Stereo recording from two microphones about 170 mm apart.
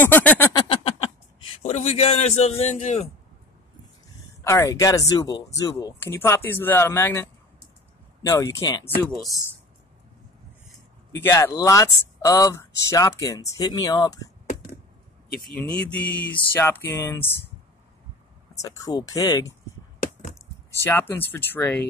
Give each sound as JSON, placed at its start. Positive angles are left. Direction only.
{"t": 0.0, "sound": "a sound", "side_deg": 10}
{"t": 0.6, "sound": "a sound", "side_deg": 35}
{"t": 1.5, "sound": "a man's voice", "side_deg": 40}
{"t": 4.5, "sound": "speech", "side_deg": 15}
{"t": 8.3, "sound": "speech", "side_deg": 20}
{"t": 11.1, "sound": "speech", "side_deg": 15}
{"t": 15.4, "sound": "speech", "side_deg": 5}
{"t": 18.6, "sound": "speech", "side_deg": 20}
{"t": 20.8, "sound": "speech", "side_deg": 10}